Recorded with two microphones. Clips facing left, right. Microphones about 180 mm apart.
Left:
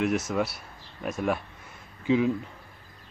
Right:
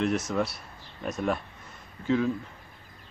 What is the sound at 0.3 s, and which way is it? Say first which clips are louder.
A man's voice: left 1 dB; 5° left (ahead or behind).